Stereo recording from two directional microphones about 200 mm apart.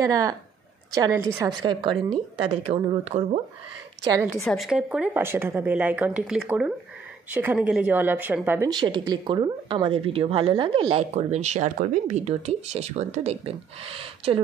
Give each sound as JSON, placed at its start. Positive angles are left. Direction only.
{"t": 0.0, "sound": "speech", "side_deg": -15}
{"t": 4.0, "sound": "a woman's voice", "side_deg": -15}
{"t": 4.5, "sound": "speech", "side_deg": 0}
{"t": 8.6, "sound": "speech", "side_deg": -20}